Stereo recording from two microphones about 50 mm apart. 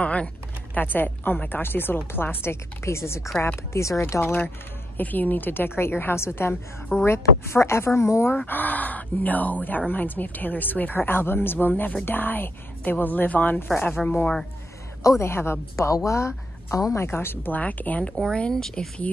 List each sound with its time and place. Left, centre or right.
0.0 s typing: left
0.7 s speech: left
3.5 s speech: left
4.2 s speech: left
4.9 s speech: left
8.5 s speech: left
15.0 s speech: left
15.7 s speech: left
17.5 s speech: left
18.0 s speech: centre